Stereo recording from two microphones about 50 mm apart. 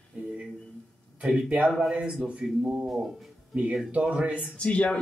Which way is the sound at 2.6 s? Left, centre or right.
Right.